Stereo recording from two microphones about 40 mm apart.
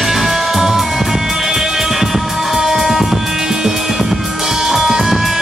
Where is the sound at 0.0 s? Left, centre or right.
Centre.